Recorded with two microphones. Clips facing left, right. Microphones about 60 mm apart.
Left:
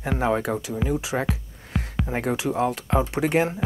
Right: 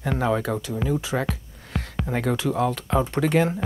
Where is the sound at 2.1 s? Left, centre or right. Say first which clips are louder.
Right 1 dB; left.